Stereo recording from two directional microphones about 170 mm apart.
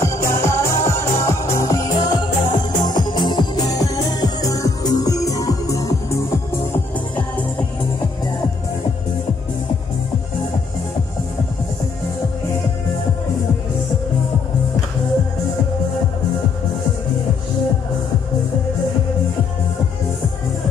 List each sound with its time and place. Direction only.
0.0 s music: 15° left (ahead or behind)